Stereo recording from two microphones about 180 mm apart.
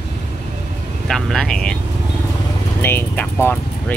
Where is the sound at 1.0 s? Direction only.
Centre (ahead or behind).